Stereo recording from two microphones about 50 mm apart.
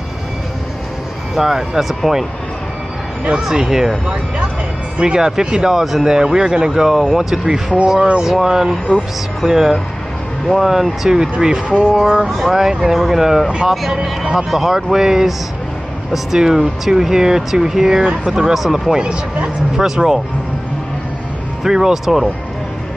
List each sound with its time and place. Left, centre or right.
1.3 s speech: centre
3.4 s speech: centre
4.9 s speech: centre
12.3 s speech: centre
13.5 s speech: centre
14.3 s speech: centre
21.6 s speech: centre